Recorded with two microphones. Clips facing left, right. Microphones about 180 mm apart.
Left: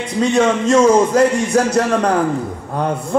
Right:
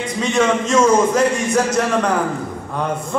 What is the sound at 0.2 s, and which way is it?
A man's voice, 35° left (ahead or behind).